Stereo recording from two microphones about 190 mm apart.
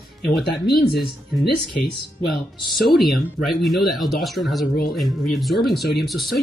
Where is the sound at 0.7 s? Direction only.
55° left (ahead or behind).